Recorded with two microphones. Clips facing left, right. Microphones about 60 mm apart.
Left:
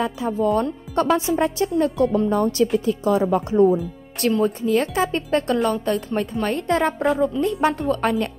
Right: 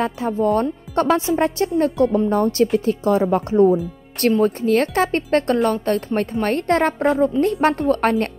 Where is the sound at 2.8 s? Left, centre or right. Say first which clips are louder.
Right 2 dB; right.